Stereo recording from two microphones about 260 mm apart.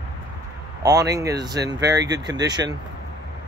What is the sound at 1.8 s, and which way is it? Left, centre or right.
Speech, right.